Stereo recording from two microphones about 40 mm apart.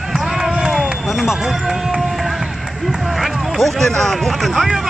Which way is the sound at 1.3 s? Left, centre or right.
Centre.